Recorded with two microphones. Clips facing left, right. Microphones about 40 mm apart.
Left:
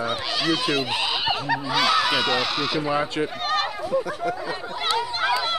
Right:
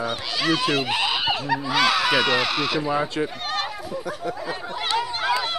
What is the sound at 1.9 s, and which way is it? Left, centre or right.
Speech, centre.